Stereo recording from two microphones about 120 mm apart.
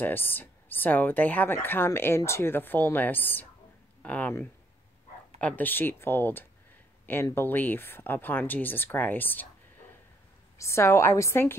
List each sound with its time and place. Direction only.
0.0 s speech: 15° left (ahead or behind)
10.6 s a woman's voice: 20° left (ahead or behind)